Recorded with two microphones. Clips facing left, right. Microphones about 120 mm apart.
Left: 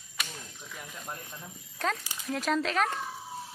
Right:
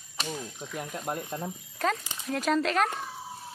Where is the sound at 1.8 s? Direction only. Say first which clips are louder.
Right 3 dB; 5° right (ahead or behind).